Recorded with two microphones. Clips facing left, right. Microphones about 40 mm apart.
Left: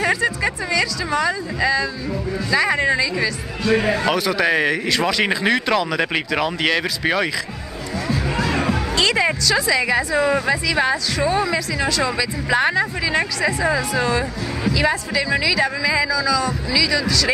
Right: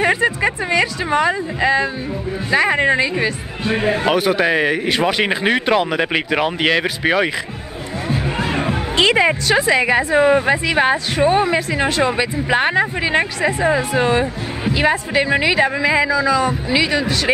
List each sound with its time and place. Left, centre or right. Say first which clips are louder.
0.0 s speech: right 3 dB; right
8.1 s speech: right 1 dB; right